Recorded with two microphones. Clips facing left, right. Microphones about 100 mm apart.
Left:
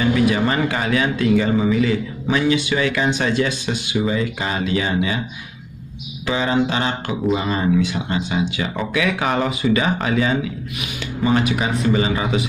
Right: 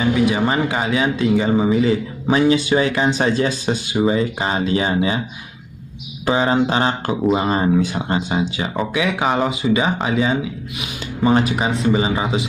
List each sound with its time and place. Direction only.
0.0 s speech: 20° right (ahead or behind)
6.2 s speech: 35° right (ahead or behind)